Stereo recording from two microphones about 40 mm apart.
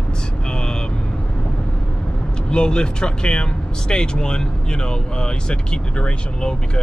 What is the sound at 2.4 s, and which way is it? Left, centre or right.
Speech, left.